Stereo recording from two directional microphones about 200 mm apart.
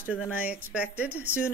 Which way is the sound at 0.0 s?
10° left (ahead or behind).